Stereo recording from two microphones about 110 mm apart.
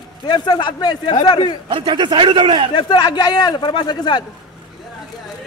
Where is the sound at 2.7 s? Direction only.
40° left (ahead or behind).